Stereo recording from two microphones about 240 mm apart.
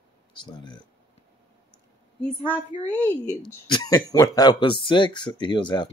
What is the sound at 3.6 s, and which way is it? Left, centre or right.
Speech, centre.